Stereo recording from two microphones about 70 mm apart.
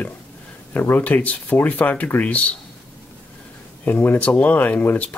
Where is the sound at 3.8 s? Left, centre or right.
Left.